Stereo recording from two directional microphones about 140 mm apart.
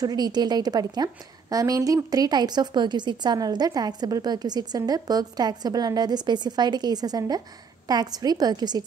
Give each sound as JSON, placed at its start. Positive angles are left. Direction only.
{"t": 0.0, "sound": "a woman's voice", "side_deg": -30}